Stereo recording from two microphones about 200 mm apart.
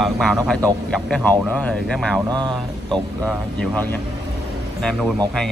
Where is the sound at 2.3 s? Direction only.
20° right (ahead or behind).